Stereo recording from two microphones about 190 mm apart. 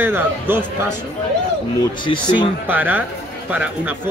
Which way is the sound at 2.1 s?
25° left (ahead or behind).